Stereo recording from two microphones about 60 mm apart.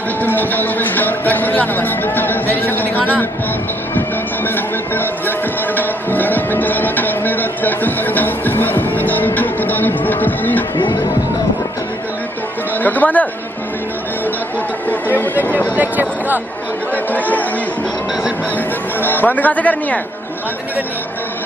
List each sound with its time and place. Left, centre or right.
0.2 s speech: left
4.5 s speech: left
5.8 s music: left
12.8 s speech: left
14.9 s speech: left
15.7 s speech: right
16.9 s speech: left
18.9 s speech: left